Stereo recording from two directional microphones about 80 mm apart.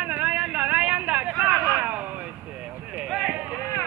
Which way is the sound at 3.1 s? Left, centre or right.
Centre.